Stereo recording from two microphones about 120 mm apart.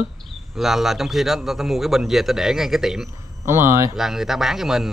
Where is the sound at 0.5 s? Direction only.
Centre (ahead or behind).